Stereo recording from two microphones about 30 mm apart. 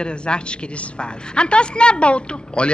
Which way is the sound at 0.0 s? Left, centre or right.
Left.